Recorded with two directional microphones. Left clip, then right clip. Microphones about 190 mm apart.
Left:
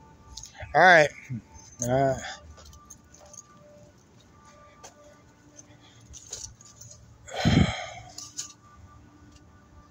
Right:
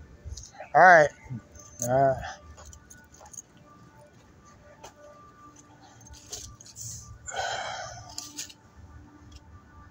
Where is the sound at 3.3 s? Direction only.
25° right (ahead or behind).